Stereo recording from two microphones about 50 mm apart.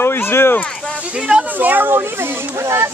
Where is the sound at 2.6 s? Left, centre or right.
Right.